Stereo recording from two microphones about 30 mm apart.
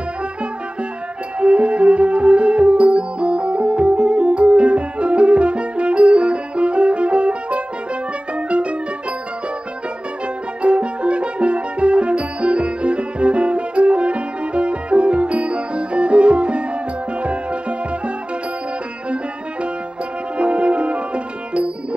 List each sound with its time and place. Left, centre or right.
1.4 s music: right
10.6 s music: right
20.3 s music: right